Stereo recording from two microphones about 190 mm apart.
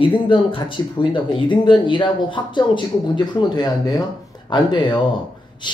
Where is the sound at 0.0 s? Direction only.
25° left (ahead or behind).